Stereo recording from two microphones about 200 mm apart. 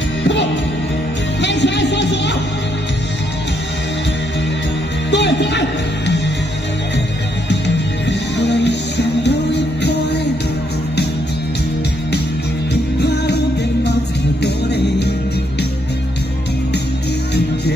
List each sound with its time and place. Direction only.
0.2 s music: 65° left (ahead or behind)
5.1 s music: 60° left (ahead or behind)
8.4 s music: 60° left (ahead or behind)
14.4 s music: 55° left (ahead or behind)